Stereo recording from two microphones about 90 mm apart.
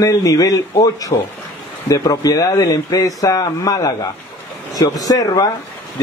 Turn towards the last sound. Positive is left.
turn(degrees=45)  # may be behind; listen again after turning